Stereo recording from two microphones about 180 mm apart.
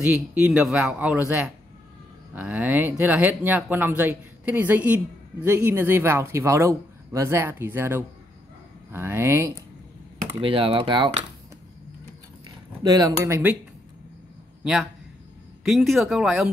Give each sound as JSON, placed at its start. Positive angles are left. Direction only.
{"t": 0.3, "sound": "speech", "side_deg": -5}
{"t": 10.4, "sound": "speech", "side_deg": -30}
{"t": 12.8, "sound": "speech", "side_deg": -20}
{"t": 14.6, "sound": "a man's voice", "side_deg": -5}